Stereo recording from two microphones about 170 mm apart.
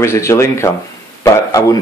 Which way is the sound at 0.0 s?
15° left (ahead or behind).